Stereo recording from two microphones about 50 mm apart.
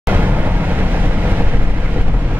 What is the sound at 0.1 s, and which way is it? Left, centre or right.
Vehicle, right.